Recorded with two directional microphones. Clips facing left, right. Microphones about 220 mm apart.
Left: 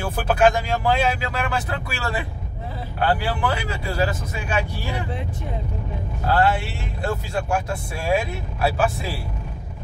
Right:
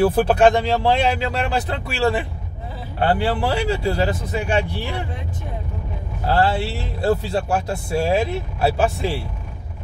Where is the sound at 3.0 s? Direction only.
30° right (ahead or behind).